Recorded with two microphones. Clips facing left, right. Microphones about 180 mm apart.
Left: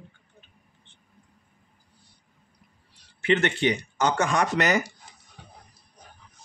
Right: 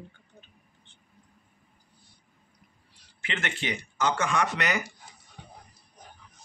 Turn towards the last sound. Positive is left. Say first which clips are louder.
# left 5 dB
turn(degrees=40)  # may be behind; listen again after turning